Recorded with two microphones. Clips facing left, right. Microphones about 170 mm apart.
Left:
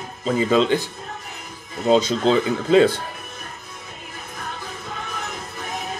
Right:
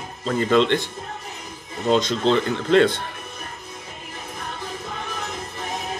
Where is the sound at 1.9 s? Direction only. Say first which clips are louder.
Left 2 dB; 5° left (ahead or behind).